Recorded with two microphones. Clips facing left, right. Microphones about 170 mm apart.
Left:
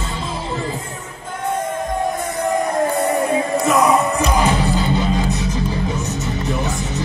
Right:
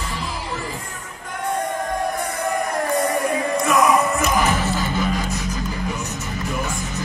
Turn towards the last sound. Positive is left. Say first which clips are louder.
# left 4 dB
turn(degrees=20)  # may be behind; listen again after turning